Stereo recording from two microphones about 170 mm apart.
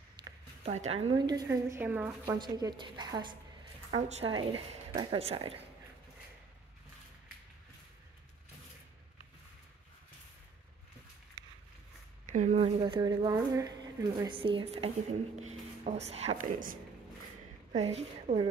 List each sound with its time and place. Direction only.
0.2 s a sound: 25° right (ahead or behind)
0.7 s a woman's voice: 40° right (ahead or behind)
12.3 s speech: 45° right (ahead or behind)
12.8 s a woman's voice: 25° right (ahead or behind)
17.7 s a woman's voice: 40° right (ahead or behind)